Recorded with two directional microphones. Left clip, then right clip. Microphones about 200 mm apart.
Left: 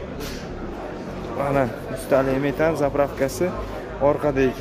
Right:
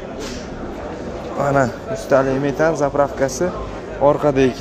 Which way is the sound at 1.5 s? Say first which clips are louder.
Right 5 dB; centre (ahead or behind).